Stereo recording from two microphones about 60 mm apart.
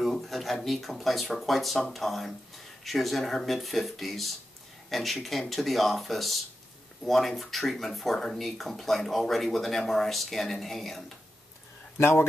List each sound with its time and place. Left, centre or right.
0.0 s speech: centre
12.0 s speech: left